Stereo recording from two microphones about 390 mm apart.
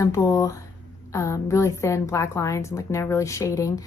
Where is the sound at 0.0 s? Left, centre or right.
Centre.